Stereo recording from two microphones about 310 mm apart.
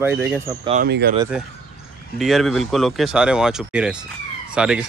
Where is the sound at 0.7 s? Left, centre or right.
Right.